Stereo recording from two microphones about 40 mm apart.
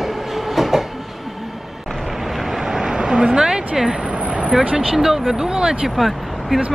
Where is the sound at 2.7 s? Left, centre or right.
Centre.